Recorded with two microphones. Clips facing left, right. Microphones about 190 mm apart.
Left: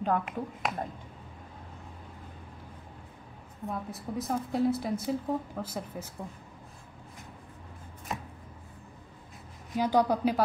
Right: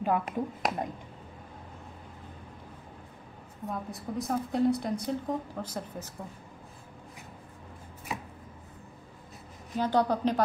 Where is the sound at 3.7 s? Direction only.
Centre (ahead or behind).